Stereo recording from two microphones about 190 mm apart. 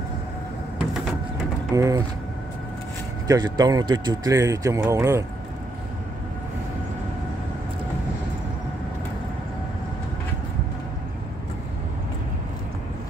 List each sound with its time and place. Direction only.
1.8 s speech: 15° right (ahead or behind)
3.3 s speech: 20° right (ahead or behind)